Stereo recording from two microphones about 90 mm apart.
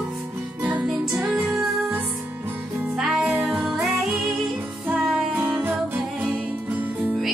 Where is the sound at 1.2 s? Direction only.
15° right (ahead or behind).